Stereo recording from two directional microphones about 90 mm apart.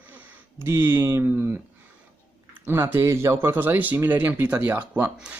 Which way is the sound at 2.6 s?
25° right (ahead or behind).